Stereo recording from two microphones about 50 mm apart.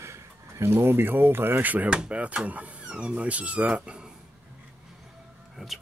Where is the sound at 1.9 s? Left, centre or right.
Right.